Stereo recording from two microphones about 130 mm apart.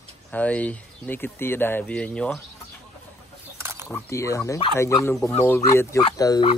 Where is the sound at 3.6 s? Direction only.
20° right (ahead or behind).